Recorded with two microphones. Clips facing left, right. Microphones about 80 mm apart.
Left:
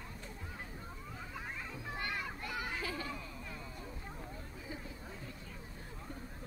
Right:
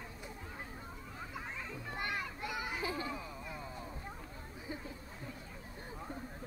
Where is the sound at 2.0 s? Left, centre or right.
Centre.